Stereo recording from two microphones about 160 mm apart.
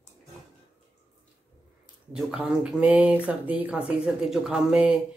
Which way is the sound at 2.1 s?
5° right (ahead or behind).